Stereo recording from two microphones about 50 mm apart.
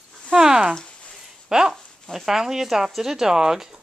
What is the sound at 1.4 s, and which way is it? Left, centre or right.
Dog, centre.